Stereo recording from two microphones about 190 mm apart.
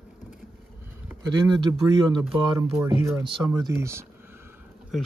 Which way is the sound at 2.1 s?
15° right (ahead or behind).